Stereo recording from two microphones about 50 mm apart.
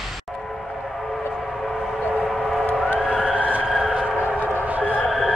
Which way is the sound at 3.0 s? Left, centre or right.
Centre.